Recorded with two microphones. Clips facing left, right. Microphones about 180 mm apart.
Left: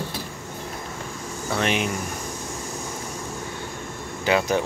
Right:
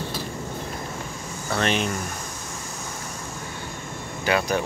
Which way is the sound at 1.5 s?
10° left (ahead or behind).